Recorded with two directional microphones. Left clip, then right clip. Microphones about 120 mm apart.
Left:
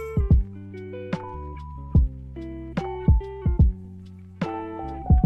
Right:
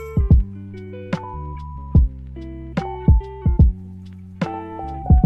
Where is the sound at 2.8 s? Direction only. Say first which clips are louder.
Right 3 dB; 30° right (ahead or behind).